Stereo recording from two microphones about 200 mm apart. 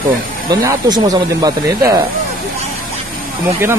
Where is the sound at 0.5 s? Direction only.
20° right (ahead or behind).